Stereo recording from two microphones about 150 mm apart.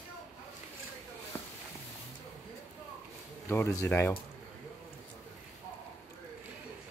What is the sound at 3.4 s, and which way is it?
Speech, 15° left (ahead or behind).